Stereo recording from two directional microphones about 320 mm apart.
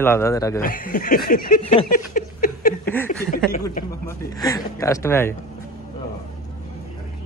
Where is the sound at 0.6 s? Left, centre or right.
Left.